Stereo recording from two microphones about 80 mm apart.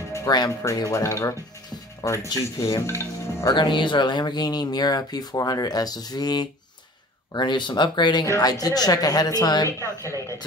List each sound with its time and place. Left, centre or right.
0.3 s speech: left
0.7 s a woman's voice: left
3.5 s speech: left
7.3 s speech: left
8.3 s a woman's voice: left
9.7 s speech: left